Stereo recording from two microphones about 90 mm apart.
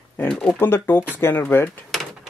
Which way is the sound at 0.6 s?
25° left (ahead or behind).